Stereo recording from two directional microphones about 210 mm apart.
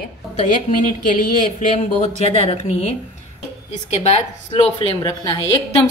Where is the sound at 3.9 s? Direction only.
30° left (ahead or behind).